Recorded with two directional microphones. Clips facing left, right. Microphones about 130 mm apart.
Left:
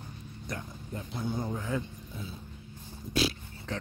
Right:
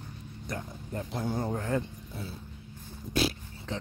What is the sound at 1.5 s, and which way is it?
Speech, 60° right (ahead or behind).